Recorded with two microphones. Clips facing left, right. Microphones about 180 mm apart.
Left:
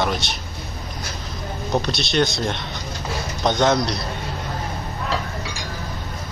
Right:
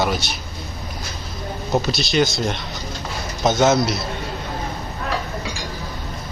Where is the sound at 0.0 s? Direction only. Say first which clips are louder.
Right 1 dB; 5° right (ahead or behind).